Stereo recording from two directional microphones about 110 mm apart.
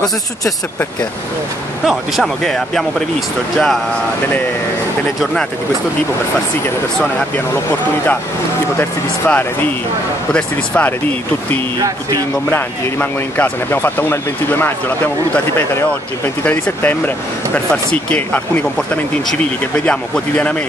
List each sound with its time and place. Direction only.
1.9 s speech: centre (ahead or behind)
5.2 s speech: 5° left (ahead or behind)
8.7 s speech: 20° left (ahead or behind)
18.1 s speech: 15° left (ahead or behind)